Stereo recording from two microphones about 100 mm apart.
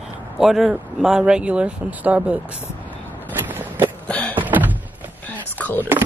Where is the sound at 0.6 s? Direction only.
20° right (ahead or behind).